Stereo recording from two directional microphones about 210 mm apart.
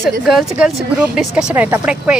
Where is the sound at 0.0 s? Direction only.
Centre (ahead or behind).